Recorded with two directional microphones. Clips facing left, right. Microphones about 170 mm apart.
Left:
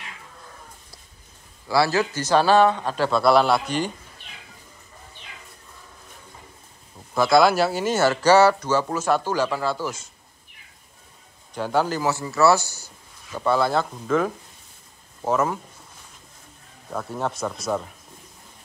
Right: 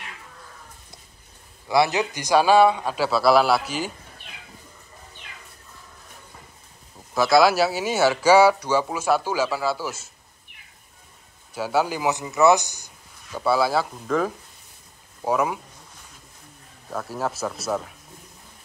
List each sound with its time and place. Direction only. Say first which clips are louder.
1.7 s speech: even; 20° right (ahead or behind)
7.2 s speech: even; 5° right (ahead or behind)
11.5 s speech: even; 5° right (ahead or behind)
16.9 s speech: even; 5° right (ahead or behind)